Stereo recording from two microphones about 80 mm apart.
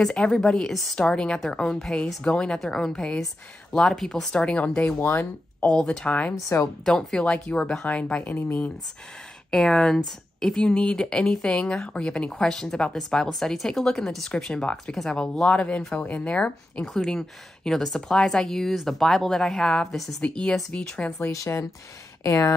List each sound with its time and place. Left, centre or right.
0.0 s speech: centre
5.8 s speech: centre
9.5 s speech: centre
21.3 s speech: left